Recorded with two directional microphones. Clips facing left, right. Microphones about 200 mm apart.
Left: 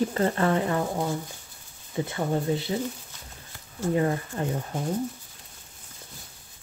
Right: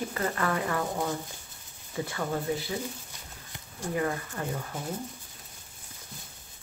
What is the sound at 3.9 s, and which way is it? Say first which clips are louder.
Speech: left 4 dB; 30° left (ahead or behind).